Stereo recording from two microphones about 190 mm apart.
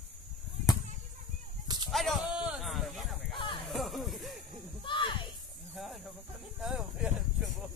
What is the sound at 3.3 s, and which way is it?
Music, 25° left (ahead or behind).